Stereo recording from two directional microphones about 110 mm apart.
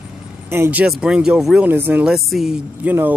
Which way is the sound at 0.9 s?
5° right (ahead or behind).